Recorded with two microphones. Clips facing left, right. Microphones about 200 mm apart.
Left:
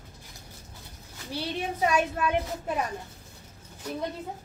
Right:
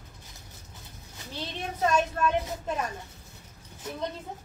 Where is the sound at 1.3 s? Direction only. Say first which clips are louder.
Left 4 dB; 10° left (ahead or behind).